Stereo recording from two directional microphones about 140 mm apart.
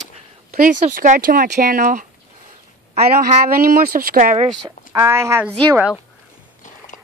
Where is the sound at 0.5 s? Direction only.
70° right (ahead or behind).